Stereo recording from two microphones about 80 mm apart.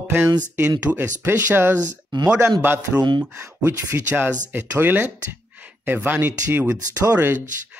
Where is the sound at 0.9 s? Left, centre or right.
Right.